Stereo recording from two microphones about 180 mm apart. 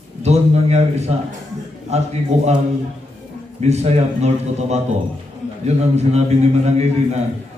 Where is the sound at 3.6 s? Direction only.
40° right (ahead or behind).